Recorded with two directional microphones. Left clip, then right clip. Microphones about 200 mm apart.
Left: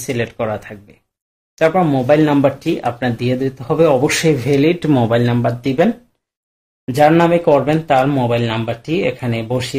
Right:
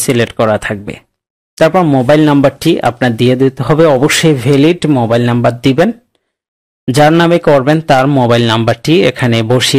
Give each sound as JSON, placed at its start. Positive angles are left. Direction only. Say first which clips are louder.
{"t": 0.0, "sound": "speech", "louder": "right 9 dB", "side_deg": -35}
{"t": 4.9, "sound": "speech", "louder": "right 4 dB", "side_deg": -15}
{"t": 5.2, "sound": "speech", "louder": "right 7 dB", "side_deg": -30}
{"t": 6.9, "sound": "speech", "louder": "right 4 dB", "side_deg": -35}